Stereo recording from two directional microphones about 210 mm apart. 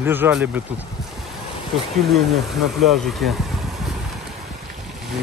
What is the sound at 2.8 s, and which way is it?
Speech, centre (ahead or behind).